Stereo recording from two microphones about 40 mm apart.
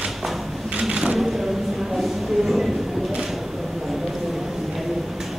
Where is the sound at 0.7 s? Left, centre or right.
Centre.